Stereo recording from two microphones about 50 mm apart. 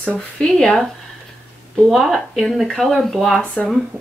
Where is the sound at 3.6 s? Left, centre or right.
Left.